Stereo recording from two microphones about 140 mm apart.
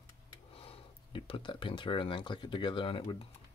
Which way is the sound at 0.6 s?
40° left (ahead or behind).